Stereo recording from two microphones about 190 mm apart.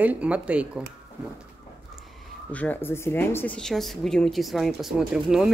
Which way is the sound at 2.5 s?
10° left (ahead or behind).